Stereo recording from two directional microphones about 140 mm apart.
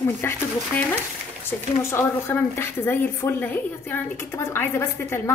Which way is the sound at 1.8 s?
20° left (ahead or behind).